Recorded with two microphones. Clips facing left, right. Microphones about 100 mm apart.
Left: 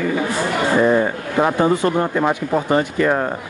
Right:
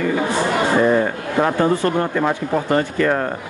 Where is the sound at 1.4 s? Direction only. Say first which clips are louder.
Left 1 dB; 15° left (ahead or behind).